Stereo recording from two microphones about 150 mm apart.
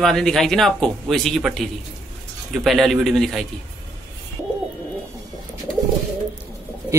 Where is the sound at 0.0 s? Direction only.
Centre (ahead or behind).